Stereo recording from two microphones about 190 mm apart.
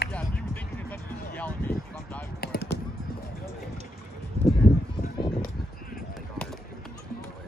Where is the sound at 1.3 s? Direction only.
10° left (ahead or behind).